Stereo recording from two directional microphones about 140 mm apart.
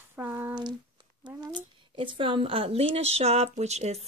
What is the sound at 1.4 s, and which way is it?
A woman's voice, 35° right (ahead or behind).